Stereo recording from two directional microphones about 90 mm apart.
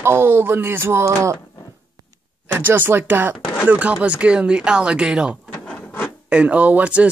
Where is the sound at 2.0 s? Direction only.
45° right (ahead or behind).